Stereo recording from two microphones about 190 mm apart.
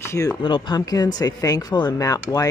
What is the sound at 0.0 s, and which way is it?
Speech, 15° left (ahead or behind).